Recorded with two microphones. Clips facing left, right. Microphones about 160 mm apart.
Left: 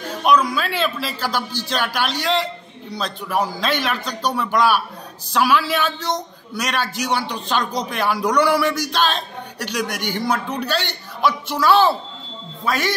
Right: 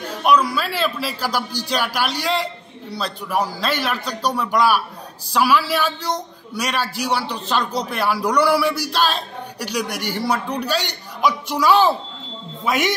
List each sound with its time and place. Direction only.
0.2 s a man's voice: 10° right (ahead or behind)